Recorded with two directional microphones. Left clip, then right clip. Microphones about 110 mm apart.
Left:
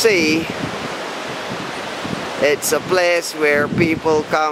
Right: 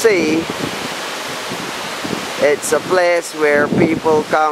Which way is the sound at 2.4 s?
35° left (ahead or behind).